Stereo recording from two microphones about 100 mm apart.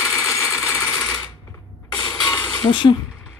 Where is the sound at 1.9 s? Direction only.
45° left (ahead or behind).